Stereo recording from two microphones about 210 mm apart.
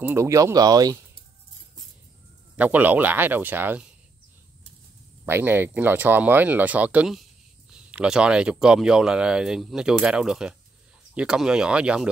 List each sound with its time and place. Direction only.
0.0 s speech: 10° right (ahead or behind)
2.5 s speech: 5° right (ahead or behind)
5.2 s speech: 10° right (ahead or behind)